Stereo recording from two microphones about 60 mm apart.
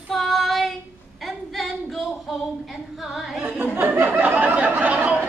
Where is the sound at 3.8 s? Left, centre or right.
Right.